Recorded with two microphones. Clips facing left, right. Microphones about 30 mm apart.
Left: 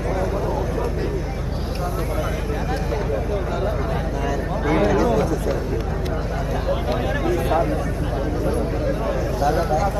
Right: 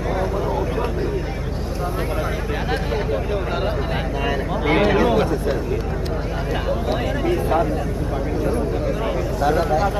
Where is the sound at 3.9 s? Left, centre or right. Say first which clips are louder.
Right 1 dB; right.